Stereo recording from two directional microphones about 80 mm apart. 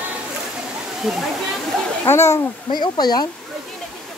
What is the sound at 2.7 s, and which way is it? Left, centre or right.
Speech, left.